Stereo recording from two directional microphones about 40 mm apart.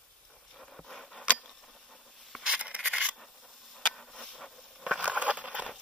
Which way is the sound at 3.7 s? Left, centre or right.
Centre.